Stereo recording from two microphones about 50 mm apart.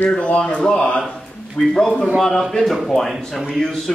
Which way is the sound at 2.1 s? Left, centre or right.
Centre.